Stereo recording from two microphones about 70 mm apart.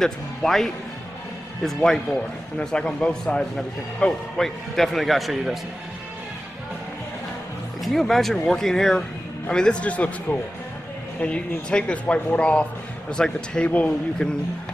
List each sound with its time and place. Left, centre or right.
0.0 s speech: centre
7.8 s speech: centre